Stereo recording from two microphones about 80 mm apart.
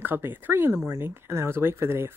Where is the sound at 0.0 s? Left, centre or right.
Right.